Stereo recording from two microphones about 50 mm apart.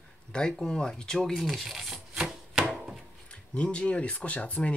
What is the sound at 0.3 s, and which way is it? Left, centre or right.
Speech, centre.